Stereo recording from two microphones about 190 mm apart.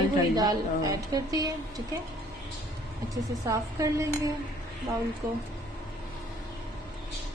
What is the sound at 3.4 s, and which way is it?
Speech, 15° right (ahead or behind).